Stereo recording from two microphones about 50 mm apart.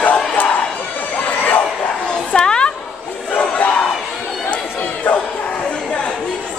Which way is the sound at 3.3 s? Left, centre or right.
Left.